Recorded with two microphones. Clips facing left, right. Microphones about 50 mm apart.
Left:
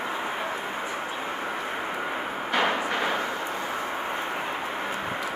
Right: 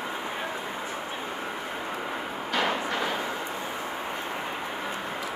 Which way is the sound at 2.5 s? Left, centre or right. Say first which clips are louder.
Left 2 dB; left.